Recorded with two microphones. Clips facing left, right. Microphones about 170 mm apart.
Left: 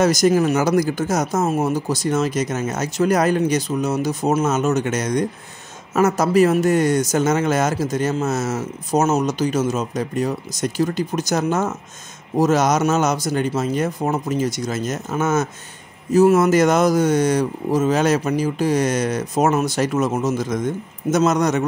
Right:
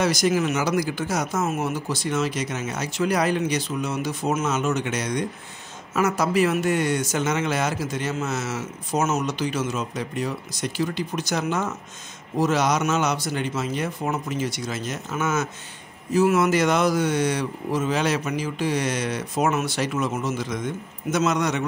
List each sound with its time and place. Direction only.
0.0 s a man's voice: 45° left (ahead or behind)